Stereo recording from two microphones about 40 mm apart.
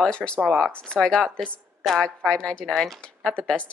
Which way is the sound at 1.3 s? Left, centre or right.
Left.